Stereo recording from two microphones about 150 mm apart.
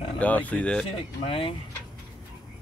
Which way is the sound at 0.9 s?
35° left (ahead or behind).